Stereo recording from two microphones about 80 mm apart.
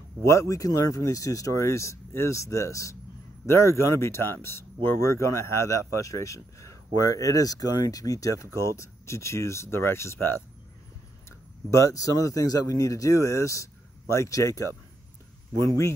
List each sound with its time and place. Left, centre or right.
0.2 s speech: left
11.7 s speech: left
15.5 s speech: right